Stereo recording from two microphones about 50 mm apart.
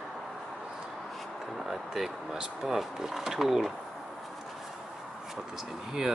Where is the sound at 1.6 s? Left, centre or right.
Centre.